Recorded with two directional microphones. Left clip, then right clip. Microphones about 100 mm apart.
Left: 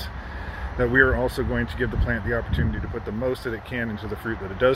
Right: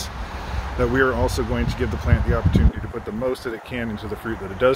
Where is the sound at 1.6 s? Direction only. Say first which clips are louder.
Right 1 dB; 10° right (ahead or behind).